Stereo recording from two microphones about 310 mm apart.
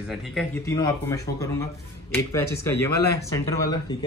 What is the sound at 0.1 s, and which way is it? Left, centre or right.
A man's voice, centre.